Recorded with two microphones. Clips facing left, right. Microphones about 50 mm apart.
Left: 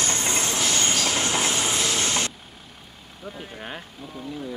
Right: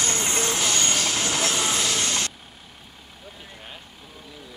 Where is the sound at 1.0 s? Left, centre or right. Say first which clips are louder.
Left 1 dB; centre.